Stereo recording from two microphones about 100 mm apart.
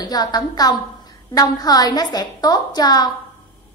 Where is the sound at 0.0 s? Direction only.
40° left (ahead or behind).